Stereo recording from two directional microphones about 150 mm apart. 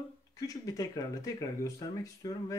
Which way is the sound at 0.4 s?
25° left (ahead or behind).